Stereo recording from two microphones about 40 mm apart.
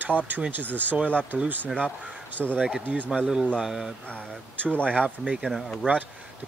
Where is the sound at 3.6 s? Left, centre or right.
Centre.